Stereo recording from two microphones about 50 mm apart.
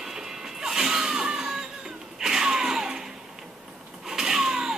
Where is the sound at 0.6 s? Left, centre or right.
Centre.